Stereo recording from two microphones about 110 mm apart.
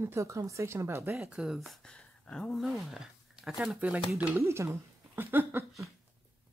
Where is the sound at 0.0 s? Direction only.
25° right (ahead or behind).